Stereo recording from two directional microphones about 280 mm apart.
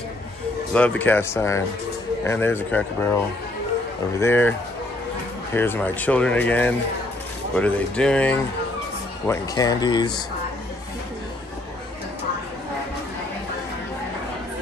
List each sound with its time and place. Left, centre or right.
0.7 s speech: centre
4.2 s speech: centre